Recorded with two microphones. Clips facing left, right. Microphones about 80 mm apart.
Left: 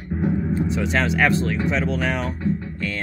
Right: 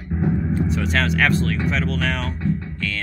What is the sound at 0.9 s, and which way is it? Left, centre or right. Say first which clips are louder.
Speech: even; centre.